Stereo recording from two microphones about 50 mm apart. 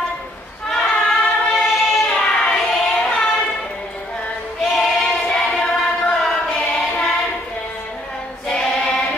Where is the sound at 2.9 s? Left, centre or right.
Left.